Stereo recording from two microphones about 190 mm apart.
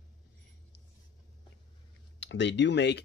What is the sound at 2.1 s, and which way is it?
Speech, 70° left (ahead or behind).